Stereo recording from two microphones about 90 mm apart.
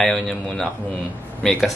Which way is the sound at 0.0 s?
5° left (ahead or behind).